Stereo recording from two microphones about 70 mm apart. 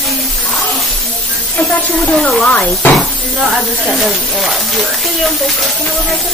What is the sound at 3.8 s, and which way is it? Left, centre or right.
Speech, centre.